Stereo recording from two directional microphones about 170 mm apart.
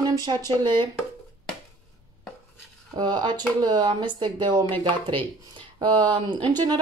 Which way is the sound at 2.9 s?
25° right (ahead or behind).